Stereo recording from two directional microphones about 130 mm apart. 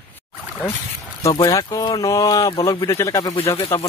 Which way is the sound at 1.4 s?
25° left (ahead or behind).